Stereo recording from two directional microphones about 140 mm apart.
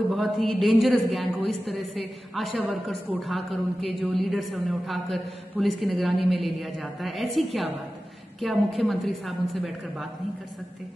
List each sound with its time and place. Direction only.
0.1 s a man's voice: centre (ahead or behind)